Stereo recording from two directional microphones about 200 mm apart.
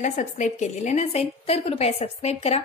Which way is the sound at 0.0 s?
35° left (ahead or behind).